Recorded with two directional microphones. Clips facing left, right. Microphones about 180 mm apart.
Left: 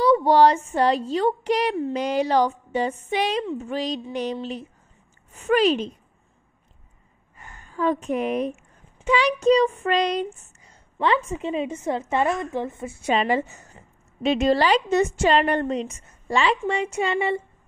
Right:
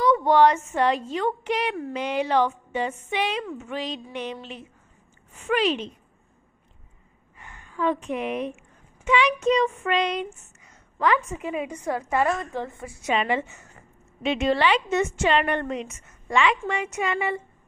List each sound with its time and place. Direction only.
0.0 s a woman's voice: 35° left (ahead or behind)
7.3 s a woman's voice: 40° left (ahead or behind)